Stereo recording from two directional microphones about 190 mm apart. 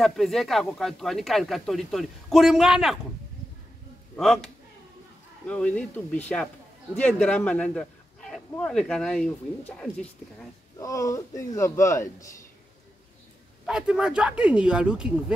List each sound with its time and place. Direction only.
0.0 s speech: centre (ahead or behind)
4.2 s speech: centre (ahead or behind)
5.5 s speech: 5° left (ahead or behind)
10.8 s speech: 15° left (ahead or behind)
13.7 s speech: 5° right (ahead or behind)